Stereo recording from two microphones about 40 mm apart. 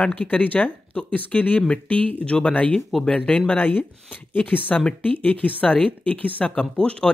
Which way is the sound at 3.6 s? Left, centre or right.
Left.